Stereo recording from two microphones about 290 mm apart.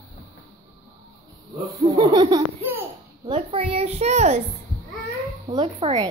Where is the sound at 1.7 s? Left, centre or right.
Centre.